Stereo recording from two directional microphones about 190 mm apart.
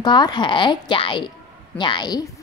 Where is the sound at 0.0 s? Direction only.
25° left (ahead or behind).